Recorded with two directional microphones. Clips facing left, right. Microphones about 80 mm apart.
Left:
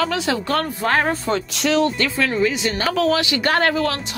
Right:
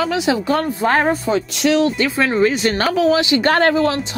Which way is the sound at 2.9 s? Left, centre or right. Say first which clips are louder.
Right 3 dB; centre.